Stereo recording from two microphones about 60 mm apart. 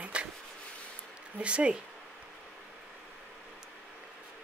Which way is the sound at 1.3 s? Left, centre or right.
Centre.